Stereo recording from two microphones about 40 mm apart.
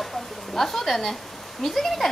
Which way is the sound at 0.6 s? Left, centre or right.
Centre.